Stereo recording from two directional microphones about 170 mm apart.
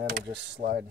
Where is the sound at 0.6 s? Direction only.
60° right (ahead or behind).